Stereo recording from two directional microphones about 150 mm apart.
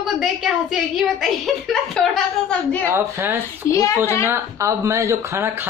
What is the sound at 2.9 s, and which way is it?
Speech, 15° right (ahead or behind).